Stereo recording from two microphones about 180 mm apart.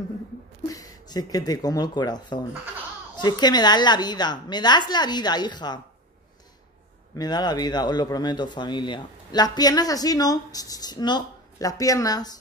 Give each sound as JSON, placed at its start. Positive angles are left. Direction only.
{"t": 0.7, "sound": "speech", "side_deg": 20}
{"t": 7.2, "sound": "speech", "side_deg": 20}